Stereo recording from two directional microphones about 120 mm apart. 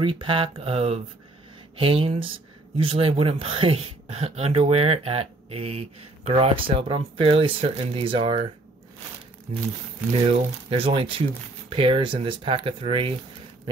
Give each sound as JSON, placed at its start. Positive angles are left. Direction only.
{"t": 0.0, "sound": "speech", "side_deg": -50}
{"t": 10.2, "sound": "speech", "side_deg": -50}